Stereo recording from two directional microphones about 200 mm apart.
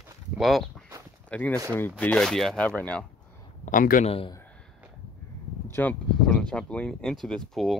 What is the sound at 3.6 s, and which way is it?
Speech, 40° left (ahead or behind).